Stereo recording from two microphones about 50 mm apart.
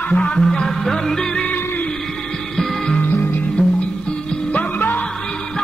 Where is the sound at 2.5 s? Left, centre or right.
Centre.